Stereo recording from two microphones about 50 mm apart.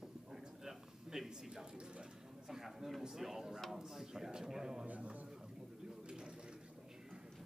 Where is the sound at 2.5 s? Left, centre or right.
Centre.